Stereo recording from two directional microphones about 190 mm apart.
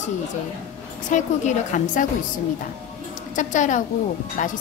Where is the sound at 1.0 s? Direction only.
40° left (ahead or behind).